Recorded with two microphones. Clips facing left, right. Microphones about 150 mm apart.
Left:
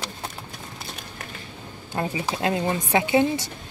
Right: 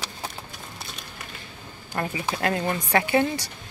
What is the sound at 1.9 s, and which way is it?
Speech, 20° left (ahead or behind).